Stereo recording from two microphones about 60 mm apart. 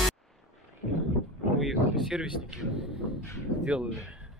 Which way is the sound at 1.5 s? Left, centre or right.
Centre.